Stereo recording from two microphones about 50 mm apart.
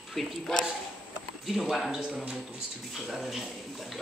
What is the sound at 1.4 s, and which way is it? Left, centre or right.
Speech, centre.